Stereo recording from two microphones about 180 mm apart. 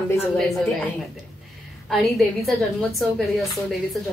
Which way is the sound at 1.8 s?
Centre (ahead or behind).